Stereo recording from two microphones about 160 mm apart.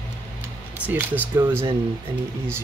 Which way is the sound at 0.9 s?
10° right (ahead or behind).